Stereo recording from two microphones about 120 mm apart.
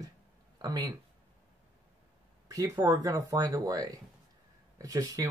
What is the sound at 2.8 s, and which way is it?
Speech, 30° right (ahead or behind).